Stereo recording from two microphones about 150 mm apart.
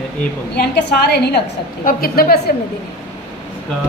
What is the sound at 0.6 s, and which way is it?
A woman's voice, 90° left.